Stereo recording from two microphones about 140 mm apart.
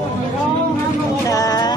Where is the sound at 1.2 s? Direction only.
25° left (ahead or behind).